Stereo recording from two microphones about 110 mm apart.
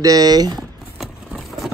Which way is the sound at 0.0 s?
35° right (ahead or behind).